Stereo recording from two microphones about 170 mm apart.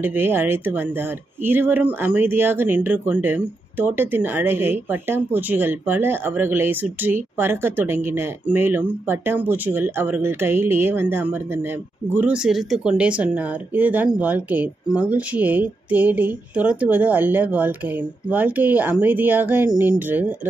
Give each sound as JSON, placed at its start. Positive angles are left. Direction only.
{"t": 0.0, "sound": "speech", "side_deg": -10}